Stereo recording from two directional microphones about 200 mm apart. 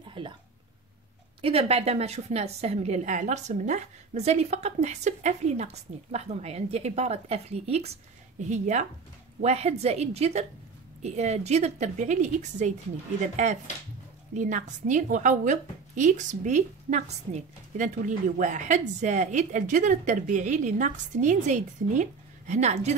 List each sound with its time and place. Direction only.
0.2 s speech: 25° right (ahead or behind)
1.4 s a woman's voice: 30° right (ahead or behind)
14.3 s a woman's voice: 40° right (ahead or behind)